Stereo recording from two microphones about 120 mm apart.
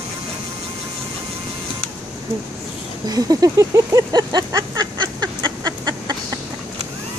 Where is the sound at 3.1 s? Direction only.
30° right (ahead or behind).